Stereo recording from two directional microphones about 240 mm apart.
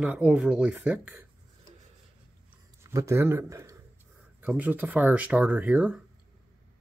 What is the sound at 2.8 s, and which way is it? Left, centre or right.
A man's voice, centre.